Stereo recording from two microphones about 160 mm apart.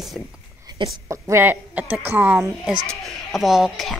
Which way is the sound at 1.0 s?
15° right (ahead or behind).